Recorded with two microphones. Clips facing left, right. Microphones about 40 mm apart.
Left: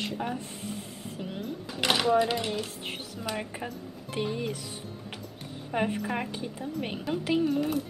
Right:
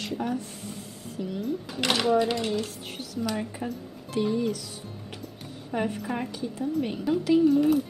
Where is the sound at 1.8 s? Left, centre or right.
Centre; by 4.5 s left.